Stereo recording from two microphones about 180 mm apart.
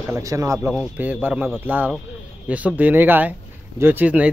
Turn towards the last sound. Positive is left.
turn(degrees=-10)  # may be behind; listen again after turning